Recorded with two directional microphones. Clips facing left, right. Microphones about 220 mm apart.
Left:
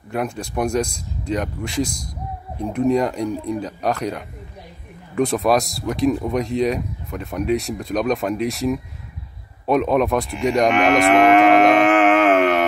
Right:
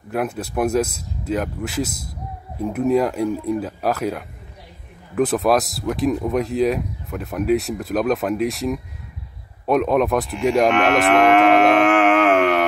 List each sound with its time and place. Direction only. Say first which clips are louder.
0.1 s speech: right 1 dB; 5° right (ahead or behind)
9.7 s cattle: even; centre (ahead or behind)